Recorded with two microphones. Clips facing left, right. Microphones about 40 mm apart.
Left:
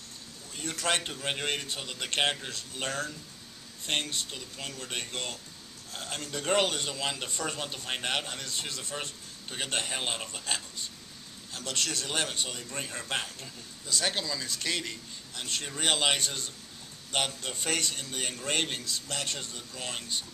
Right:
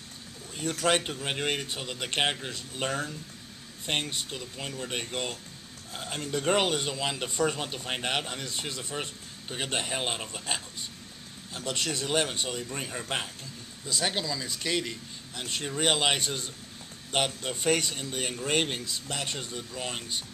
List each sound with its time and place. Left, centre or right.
0.7 s a man's voice: centre